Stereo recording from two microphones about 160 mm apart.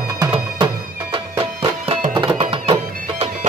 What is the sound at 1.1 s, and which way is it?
Music, 35° right (ahead or behind).